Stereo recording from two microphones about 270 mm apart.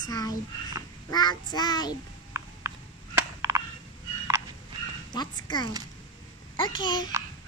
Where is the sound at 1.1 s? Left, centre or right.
Centre.